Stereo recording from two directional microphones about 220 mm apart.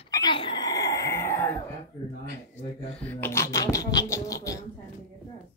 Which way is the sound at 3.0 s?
10° left (ahead or behind).